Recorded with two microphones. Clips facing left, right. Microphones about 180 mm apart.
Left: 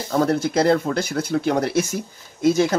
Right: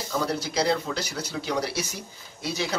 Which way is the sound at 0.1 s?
50° left (ahead or behind).